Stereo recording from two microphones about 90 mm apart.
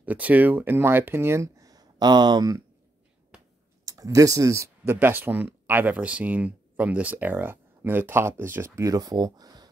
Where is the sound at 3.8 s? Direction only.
40° right (ahead or behind).